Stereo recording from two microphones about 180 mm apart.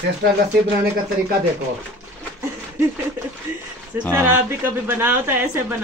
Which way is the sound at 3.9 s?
15° right (ahead or behind).